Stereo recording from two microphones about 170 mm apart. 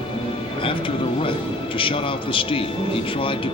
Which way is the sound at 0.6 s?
30° left (ahead or behind).